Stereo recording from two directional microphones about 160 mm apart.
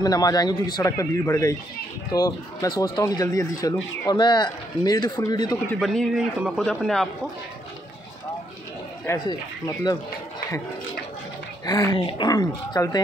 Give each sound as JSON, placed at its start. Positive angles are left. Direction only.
{"t": 0.0, "sound": "speech", "side_deg": 25}
{"t": 5.8, "sound": "a man's voice", "side_deg": 0}
{"t": 9.3, "sound": "speech", "side_deg": 25}
{"t": 11.6, "sound": "speech", "side_deg": 25}